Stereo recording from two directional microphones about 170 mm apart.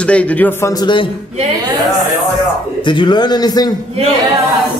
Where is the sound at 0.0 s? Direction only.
5° left (ahead or behind); by 1.0 s 25° left (ahead or behind).